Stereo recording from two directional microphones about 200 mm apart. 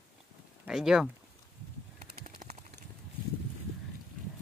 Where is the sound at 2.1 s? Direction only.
45° right (ahead or behind).